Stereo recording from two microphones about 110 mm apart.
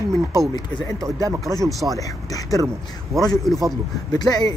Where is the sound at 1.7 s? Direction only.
Centre (ahead or behind).